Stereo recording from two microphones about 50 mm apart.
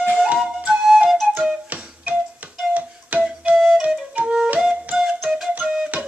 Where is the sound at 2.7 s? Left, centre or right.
Right.